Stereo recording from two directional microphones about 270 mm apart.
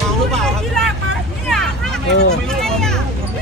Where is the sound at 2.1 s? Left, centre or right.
Left.